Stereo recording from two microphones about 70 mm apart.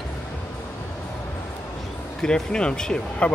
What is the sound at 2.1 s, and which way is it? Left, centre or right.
Speech, centre.